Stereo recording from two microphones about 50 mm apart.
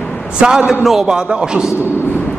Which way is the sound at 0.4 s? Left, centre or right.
Centre.